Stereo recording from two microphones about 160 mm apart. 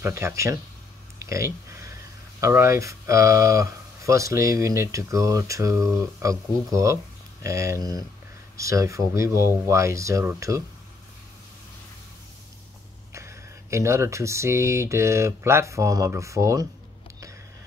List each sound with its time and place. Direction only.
0.0 s speech: 15° right (ahead or behind)
1.2 s a sound: 15° right (ahead or behind)
2.4 s speech: 15° right (ahead or behind)
13.1 s speech: 15° right (ahead or behind)